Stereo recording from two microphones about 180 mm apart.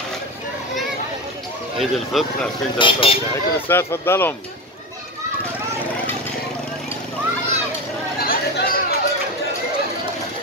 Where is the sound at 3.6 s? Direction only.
15° left (ahead or behind).